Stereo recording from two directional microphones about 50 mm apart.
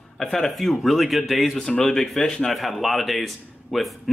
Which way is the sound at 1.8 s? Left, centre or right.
Centre.